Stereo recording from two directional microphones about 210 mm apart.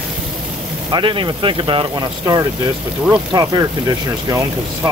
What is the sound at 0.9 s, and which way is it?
Speech, 25° right (ahead or behind).